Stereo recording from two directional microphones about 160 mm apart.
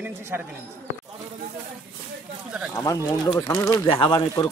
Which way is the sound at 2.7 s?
20° left (ahead or behind).